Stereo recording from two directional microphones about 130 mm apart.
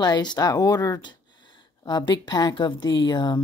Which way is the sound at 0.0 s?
30° left (ahead or behind).